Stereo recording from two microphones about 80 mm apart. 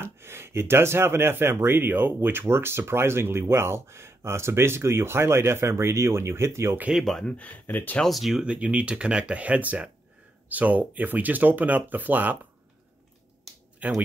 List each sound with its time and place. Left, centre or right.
0.0 s speech: right
6.9 s speech: centre
7.3 s speech: left
8.0 s speech: centre
8.5 s speech: centre
13.8 s speech: centre